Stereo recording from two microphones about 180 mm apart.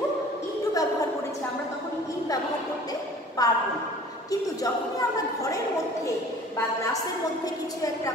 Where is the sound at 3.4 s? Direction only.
20° left (ahead or behind).